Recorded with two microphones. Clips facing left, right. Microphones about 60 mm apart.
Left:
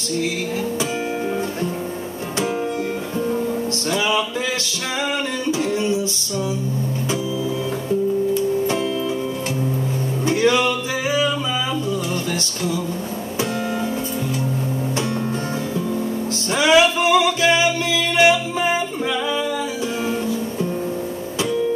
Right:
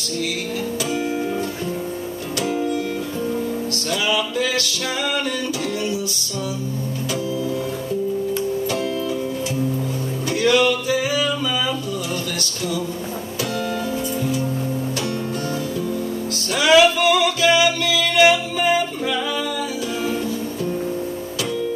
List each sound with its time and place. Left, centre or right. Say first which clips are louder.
10.2 s music: even; left
16.5 s music: right 1 dB; left